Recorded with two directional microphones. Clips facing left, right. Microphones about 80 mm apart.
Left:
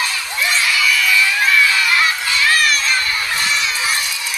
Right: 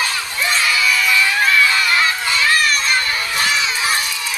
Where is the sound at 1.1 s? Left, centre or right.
Centre.